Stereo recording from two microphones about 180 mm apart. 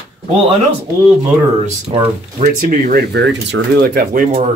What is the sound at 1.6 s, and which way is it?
Speech, 35° right (ahead or behind).